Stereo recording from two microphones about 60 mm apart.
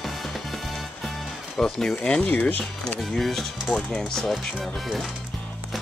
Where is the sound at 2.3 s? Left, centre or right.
Left.